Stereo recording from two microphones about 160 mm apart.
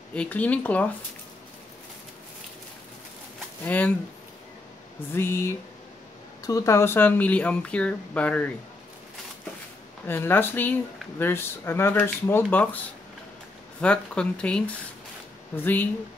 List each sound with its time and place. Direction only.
0.1 s speech: 10° left (ahead or behind)
3.6 s speech: 10° left (ahead or behind)
5.1 s speech: 15° left (ahead or behind)
10.0 s speech: 15° left (ahead or behind)